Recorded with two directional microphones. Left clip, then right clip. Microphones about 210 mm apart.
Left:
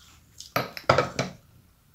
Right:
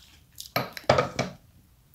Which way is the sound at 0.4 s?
30° right (ahead or behind).